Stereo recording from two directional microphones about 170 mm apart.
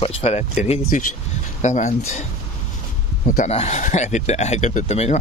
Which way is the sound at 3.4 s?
40° left (ahead or behind).